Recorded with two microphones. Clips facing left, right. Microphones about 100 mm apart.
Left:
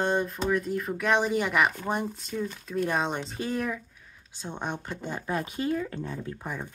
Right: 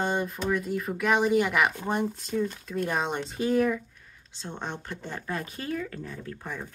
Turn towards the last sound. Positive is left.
turn(degrees=15)  # may be behind; listen again after turning